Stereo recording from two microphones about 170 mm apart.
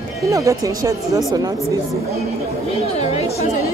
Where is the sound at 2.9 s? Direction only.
40° left (ahead or behind).